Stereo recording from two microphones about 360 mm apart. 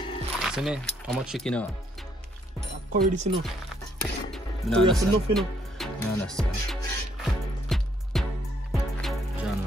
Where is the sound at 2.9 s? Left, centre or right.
Centre.